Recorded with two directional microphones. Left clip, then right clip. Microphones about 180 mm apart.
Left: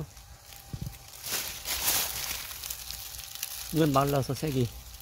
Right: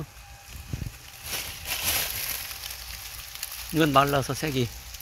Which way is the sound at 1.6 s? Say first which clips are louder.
Right 3 dB; 10° right (ahead or behind).